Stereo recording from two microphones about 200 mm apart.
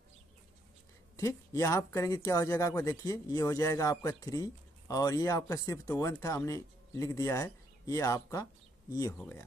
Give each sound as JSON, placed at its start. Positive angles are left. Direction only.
{"t": 1.1, "sound": "speech", "side_deg": 15}